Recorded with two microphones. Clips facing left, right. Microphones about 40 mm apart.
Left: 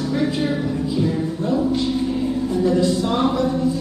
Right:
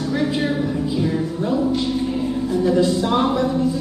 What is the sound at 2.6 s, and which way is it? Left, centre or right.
Speech, centre.